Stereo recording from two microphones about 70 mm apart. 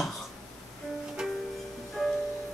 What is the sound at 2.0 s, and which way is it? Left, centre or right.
Music, centre.